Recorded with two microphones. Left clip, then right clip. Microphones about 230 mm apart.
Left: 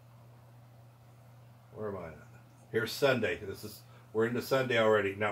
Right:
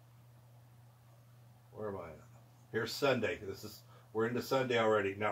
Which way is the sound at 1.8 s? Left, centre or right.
Centre.